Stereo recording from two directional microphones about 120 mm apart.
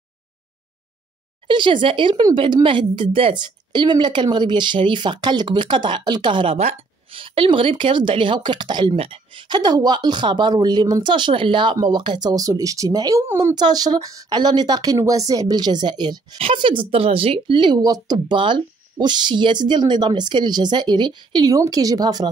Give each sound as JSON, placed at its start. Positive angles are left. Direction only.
{"t": 1.5, "sound": "a woman's voice", "side_deg": -45}
{"t": 8.9, "sound": "speech", "side_deg": -50}
{"t": 13.6, "sound": "speech", "side_deg": -35}